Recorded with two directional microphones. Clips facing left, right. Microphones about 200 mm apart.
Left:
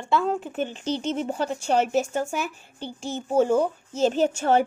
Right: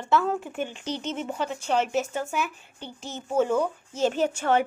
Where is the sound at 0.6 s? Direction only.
35° left (ahead or behind).